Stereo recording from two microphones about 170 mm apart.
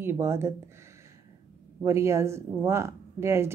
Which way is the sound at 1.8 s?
15° right (ahead or behind).